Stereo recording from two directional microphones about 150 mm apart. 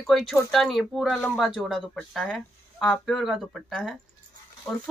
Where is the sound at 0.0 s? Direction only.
Centre (ahead or behind).